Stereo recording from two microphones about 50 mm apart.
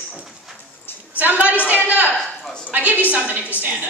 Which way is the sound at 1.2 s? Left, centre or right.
Right.